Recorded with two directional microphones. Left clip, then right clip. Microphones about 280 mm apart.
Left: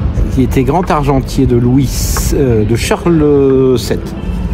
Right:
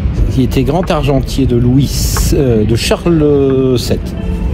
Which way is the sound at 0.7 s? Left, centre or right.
Centre.